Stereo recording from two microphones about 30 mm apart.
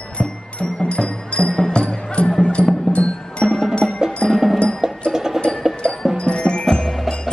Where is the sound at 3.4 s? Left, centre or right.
Centre.